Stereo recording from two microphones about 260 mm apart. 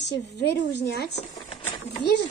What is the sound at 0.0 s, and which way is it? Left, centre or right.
Speech, left.